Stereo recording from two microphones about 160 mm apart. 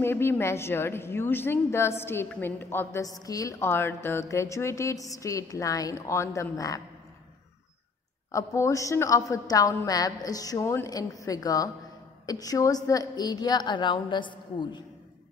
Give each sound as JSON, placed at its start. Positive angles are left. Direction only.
{"t": 0.0, "sound": "a woman's voice", "side_deg": 15}
{"t": 8.3, "sound": "a woman's voice", "side_deg": 20}